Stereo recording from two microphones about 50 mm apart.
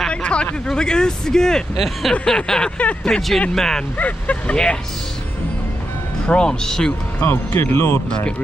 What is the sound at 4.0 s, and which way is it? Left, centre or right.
Speech, left.